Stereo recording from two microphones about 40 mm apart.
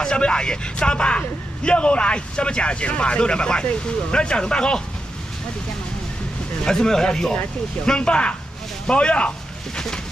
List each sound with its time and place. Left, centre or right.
0.0 s speech: left
6.6 s speech: centre